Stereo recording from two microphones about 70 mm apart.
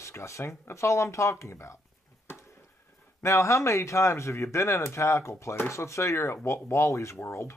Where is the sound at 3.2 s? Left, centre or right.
Left.